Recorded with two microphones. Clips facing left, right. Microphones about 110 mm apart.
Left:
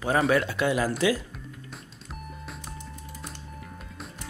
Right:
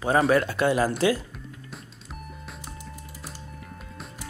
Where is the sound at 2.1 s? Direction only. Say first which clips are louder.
Left 1 dB; centre (ahead or behind).